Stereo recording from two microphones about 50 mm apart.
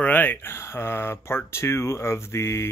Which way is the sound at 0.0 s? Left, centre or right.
Left.